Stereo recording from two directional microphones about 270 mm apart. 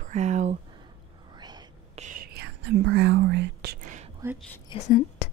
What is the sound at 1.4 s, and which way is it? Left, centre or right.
Whispering, centre.